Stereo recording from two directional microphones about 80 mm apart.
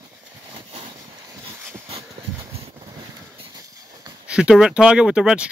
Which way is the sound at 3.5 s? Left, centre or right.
Right.